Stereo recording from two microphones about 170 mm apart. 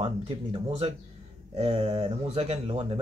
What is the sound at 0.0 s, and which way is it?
Speech, 35° right (ahead or behind).